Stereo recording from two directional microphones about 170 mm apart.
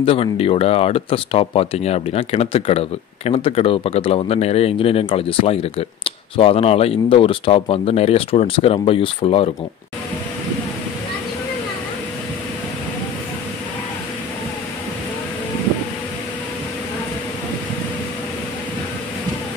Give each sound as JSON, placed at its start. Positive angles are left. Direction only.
{"t": 0.0, "sound": "speech", "side_deg": 35}